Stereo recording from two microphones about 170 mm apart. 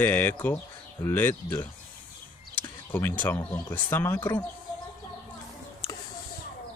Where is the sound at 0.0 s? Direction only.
10° left (ahead or behind).